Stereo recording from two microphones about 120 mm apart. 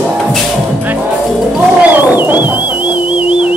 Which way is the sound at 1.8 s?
15° right (ahead or behind).